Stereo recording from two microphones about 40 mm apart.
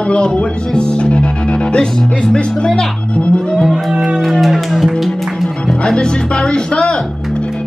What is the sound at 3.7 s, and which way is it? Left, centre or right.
Music, centre.